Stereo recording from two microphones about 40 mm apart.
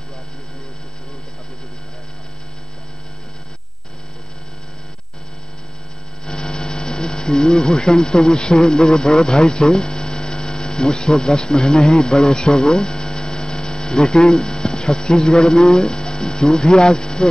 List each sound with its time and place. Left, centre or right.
6.3 s speech: centre
9.0 s mains hum: centre